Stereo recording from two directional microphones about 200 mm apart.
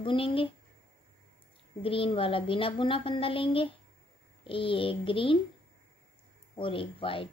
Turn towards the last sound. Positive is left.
turn(degrees=25)  # may be behind; listen again after turning